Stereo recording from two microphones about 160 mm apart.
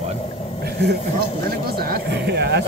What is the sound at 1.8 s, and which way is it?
Speech, 80° right.